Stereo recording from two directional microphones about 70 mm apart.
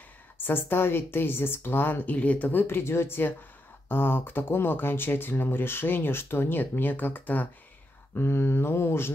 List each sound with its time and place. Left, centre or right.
0.4 s speech: left